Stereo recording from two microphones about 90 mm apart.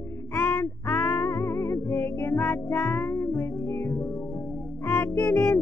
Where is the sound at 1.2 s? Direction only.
30° left (ahead or behind).